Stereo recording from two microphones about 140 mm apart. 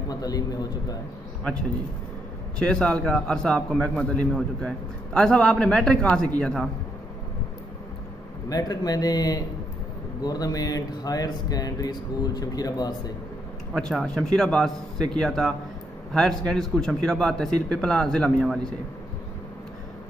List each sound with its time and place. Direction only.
0.1 s speech: 25° left (ahead or behind)
2.6 s a man's voice: 5° left (ahead or behind)
8.5 s speech: 25° left (ahead or behind)
13.7 s a man's voice: 5° left (ahead or behind)